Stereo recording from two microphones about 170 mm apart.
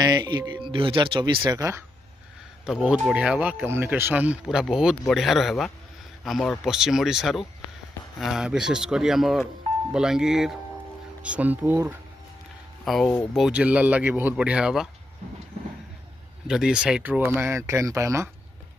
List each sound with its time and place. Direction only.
0.0 s speech: 25° right (ahead or behind)
2.6 s speech: 5° right (ahead or behind)
12.8 s speech: centre (ahead or behind)
16.4 s speech: 5° right (ahead or behind)